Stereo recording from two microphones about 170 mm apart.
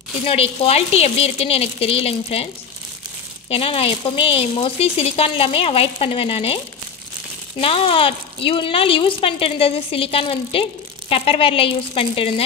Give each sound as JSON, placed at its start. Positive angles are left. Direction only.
{"t": 0.2, "sound": "speech", "side_deg": 35}
{"t": 3.4, "sound": "speech", "side_deg": 35}
{"t": 7.6, "sound": "speech", "side_deg": 30}